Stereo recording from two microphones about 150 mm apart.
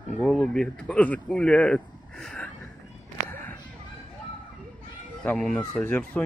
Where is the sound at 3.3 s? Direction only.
15° left (ahead or behind).